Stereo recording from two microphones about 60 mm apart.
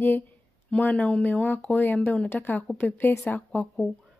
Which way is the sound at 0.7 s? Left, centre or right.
Left.